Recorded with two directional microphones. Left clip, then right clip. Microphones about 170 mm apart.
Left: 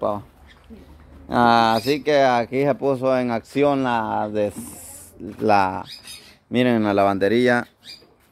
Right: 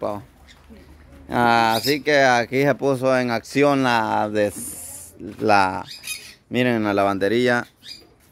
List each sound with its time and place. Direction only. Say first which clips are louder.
1.3 s speech: left 1 dB; 5° right (ahead or behind); by 4.6 s 35° right (ahead or behind)
5.4 s speech: right 1 dB; 15° right (ahead or behind)
6.5 s speech: left 1 dB; 5° right (ahead or behind)